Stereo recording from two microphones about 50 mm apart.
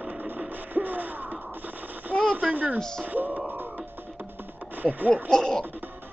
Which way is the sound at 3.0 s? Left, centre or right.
Right.